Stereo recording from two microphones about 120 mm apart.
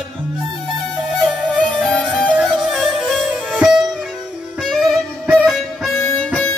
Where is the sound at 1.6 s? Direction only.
10° left (ahead or behind).